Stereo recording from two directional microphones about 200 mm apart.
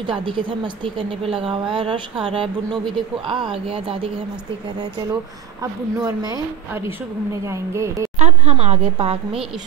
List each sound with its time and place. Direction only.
0.0 s a woman's voice: 25° right (ahead or behind)
5.6 s speech: 20° right (ahead or behind)
8.2 s a woman's voice: 30° right (ahead or behind)